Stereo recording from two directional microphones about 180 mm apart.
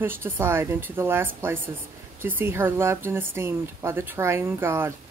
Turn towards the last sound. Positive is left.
turn(degrees=-15)  # may be behind; listen again after turning